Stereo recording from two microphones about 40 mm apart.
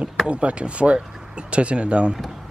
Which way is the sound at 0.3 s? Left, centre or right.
Right.